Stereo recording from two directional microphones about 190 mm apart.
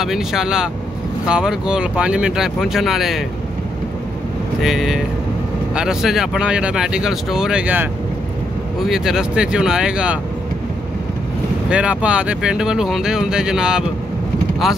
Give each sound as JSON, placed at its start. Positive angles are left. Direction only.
{"t": 0.0, "sound": "speech", "side_deg": 0}
{"t": 4.6, "sound": "speech", "side_deg": 0}
{"t": 11.7, "sound": "speech", "side_deg": -5}